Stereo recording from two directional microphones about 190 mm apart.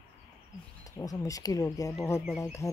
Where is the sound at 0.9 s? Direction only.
20° left (ahead or behind).